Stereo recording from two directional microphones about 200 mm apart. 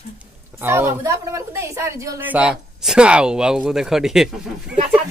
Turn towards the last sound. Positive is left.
turn(degrees=-5)  # may be behind; listen again after turning